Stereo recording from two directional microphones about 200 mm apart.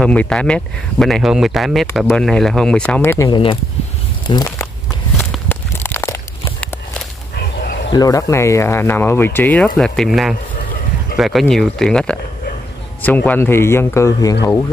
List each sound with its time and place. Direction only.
0.0 s speech: 5° left (ahead or behind)
3.3 s speech: 25° left (ahead or behind)
5.3 s a sound: 10° left (ahead or behind)
7.9 s speech: 20° left (ahead or behind)